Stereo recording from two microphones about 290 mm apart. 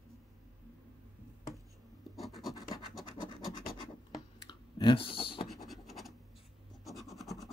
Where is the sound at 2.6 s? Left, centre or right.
Centre.